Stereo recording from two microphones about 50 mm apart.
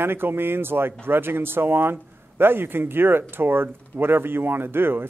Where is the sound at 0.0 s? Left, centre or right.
Right.